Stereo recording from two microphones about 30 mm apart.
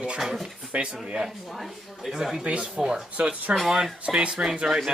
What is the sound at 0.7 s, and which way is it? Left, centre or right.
Speech, right.